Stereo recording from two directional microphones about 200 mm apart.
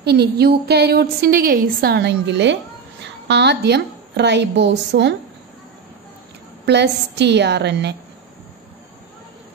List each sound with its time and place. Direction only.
0.0 s a woman's voice: 55° right (ahead or behind)
6.6 s a woman's voice: 60° right (ahead or behind)